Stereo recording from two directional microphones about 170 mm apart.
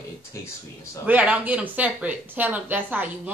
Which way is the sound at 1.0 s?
10° right (ahead or behind).